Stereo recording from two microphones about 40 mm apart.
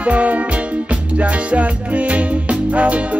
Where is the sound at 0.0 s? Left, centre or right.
Right.